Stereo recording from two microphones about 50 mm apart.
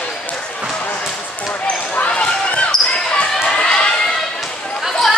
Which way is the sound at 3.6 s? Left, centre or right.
Left.